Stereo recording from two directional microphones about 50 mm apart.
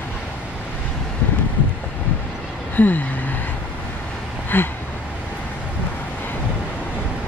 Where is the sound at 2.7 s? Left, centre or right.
Left.